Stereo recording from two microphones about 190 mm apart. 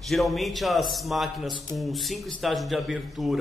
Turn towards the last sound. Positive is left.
turn(degrees=0)  # may be behind; listen again after turning